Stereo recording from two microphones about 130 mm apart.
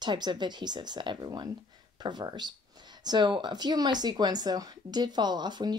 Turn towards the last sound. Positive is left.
turn(degrees=-35)  # may be behind; listen again after turning